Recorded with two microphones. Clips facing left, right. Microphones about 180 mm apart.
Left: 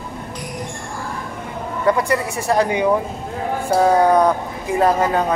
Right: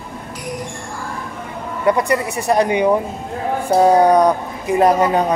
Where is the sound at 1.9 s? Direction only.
20° right (ahead or behind).